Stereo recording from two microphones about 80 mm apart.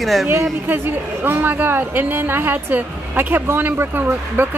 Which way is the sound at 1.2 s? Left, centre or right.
Right.